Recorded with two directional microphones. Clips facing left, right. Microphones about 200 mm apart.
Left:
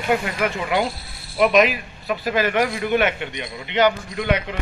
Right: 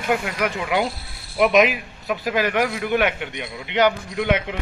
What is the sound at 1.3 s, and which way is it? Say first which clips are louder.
A man's voice: even; 15° right (ahead or behind).